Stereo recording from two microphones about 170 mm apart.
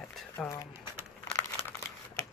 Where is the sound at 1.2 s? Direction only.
15° left (ahead or behind).